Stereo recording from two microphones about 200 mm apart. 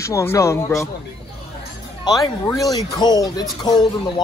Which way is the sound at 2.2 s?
15° left (ahead or behind).